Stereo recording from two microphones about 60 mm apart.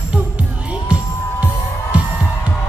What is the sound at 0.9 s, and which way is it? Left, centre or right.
Music, centre.